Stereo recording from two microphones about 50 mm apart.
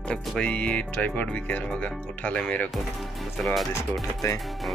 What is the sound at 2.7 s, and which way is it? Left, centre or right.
Speech, centre.